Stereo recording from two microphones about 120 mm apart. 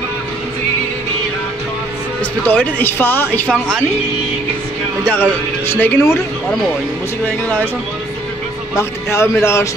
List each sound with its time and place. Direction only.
2.4 s speech: 15° left (ahead or behind)
5.0 s speech: 15° left (ahead or behind)
8.7 s speech: 25° left (ahead or behind)